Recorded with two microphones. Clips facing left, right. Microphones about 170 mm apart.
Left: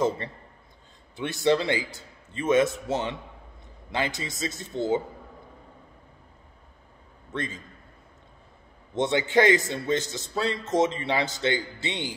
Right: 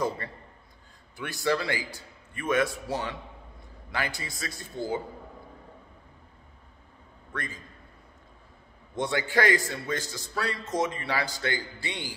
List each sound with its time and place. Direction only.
0.2 s a man's voice: 20° left (ahead or behind)
7.3 s a man's voice: 25° left (ahead or behind)
8.9 s a man's voice: 20° left (ahead or behind)